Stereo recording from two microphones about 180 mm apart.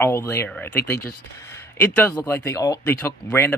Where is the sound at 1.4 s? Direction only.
15° left (ahead or behind).